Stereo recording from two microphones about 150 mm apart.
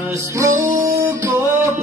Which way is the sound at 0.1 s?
20° right (ahead or behind).